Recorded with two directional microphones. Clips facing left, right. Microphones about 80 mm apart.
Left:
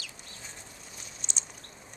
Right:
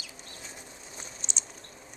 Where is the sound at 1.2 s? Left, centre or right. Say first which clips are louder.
Right 1 dB; centre.